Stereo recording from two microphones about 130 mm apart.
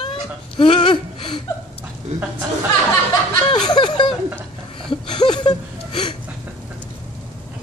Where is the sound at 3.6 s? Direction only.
35° left (ahead or behind).